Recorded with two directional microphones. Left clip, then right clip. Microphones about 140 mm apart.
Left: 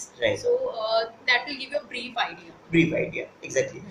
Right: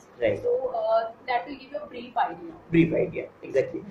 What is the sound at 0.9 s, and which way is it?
A woman's voice, 25° left (ahead or behind).